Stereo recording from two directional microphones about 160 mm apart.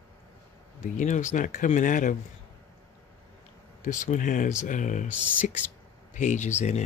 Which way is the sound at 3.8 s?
50° left (ahead or behind).